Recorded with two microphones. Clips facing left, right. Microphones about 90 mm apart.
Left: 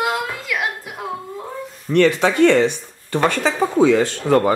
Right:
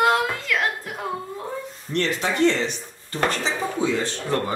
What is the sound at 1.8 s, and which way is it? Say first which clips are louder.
Speech: left 9 dB; 70° left (ahead or behind).